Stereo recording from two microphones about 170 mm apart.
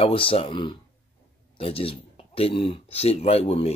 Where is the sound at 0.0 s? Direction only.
30° left (ahead or behind).